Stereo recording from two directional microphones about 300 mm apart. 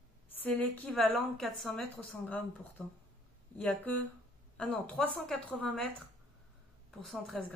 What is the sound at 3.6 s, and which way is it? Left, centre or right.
A woman's voice, centre.